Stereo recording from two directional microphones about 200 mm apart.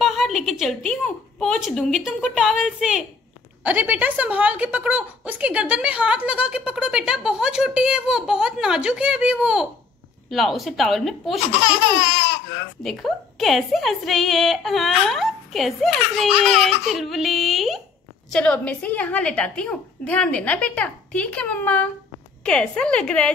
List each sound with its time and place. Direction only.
0.0 s a woman's voice: centre (ahead or behind)
11.6 s laughter: 60° left (ahead or behind)
12.8 s a woman's voice: centre (ahead or behind)